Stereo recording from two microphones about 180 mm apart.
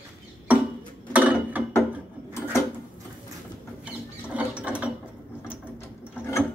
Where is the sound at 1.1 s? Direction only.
10° right (ahead or behind).